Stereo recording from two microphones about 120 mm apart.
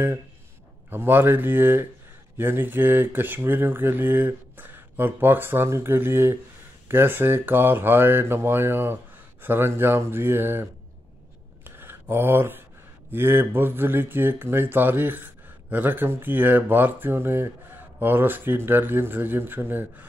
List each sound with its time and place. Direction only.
0.8 s speech: 15° right (ahead or behind)
11.6 s a sound: 15° right (ahead or behind)
13.1 s speech: 20° right (ahead or behind)